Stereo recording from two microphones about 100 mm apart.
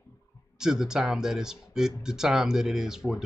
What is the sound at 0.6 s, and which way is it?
Speech, 5° right (ahead or behind).